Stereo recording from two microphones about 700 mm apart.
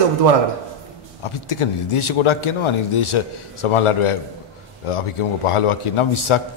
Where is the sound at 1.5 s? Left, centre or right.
Left.